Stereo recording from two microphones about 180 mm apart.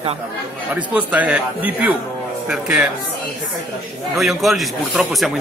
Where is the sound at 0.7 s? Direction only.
10° right (ahead or behind).